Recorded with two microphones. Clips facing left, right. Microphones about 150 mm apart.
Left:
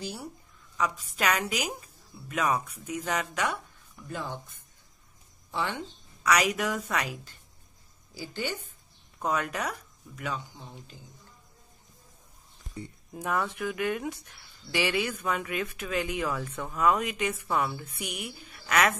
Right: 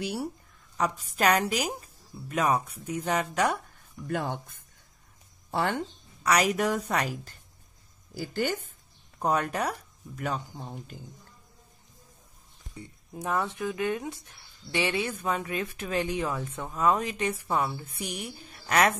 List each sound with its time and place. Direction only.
0.7 s speech: 40° right (ahead or behind)
4.1 s speech: 60° right (ahead or behind)
5.5 s a woman's voice: 50° right (ahead or behind)
8.1 s a woman's voice: 50° right (ahead or behind)
9.2 s speech: 35° right (ahead or behind); by 11.1 s 50° right (ahead or behind)
13.2 s speech: 25° right (ahead or behind)